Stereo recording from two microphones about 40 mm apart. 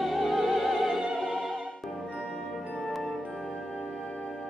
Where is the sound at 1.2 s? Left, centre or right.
Centre.